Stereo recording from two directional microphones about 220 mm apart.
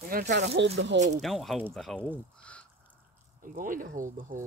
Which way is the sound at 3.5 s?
35° right (ahead or behind).